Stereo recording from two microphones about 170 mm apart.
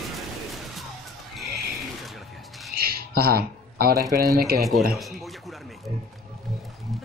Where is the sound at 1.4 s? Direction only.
Centre (ahead or behind).